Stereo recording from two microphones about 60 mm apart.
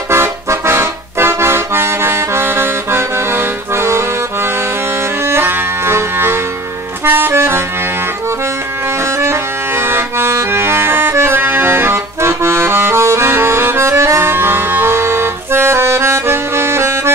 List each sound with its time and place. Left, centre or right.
0.1 s accordion: right
5.2 s music: right
9.0 s accordion: right